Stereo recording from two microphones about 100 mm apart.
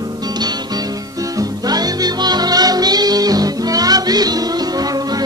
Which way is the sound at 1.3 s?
40° right (ahead or behind).